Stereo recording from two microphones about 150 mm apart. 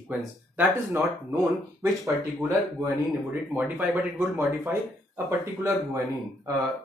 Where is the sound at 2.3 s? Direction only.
15° right (ahead or behind).